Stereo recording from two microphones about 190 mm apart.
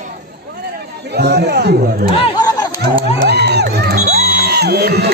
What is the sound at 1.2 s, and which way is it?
Speech, 60° right (ahead or behind).